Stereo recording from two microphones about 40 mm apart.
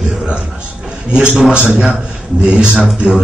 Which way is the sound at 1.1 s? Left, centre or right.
Centre.